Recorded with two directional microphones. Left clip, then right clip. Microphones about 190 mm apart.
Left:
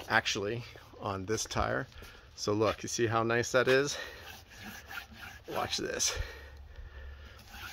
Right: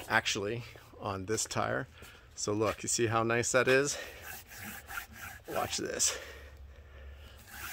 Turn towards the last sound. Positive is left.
turn(degrees=0)  # may be behind; listen again after turning